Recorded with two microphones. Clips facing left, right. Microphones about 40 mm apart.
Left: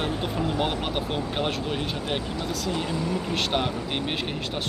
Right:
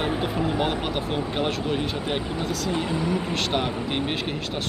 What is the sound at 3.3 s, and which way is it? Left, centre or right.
Speech, centre.